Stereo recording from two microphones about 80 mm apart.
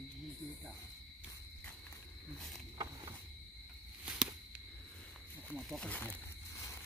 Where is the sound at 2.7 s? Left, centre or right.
Right.